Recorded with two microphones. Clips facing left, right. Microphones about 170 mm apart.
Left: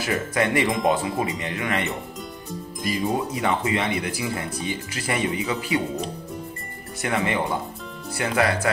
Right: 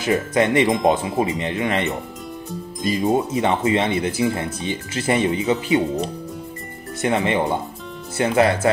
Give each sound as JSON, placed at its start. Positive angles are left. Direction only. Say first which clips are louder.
{"t": 0.0, "sound": "speech", "louder": "right 5 dB", "side_deg": -20}
{"t": 3.1, "sound": "speech", "louder": "right 6 dB", "side_deg": -25}
{"t": 7.0, "sound": "speech", "louder": "right 5 dB", "side_deg": -25}